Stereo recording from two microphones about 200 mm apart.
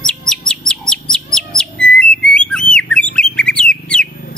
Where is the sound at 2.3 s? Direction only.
5° left (ahead or behind).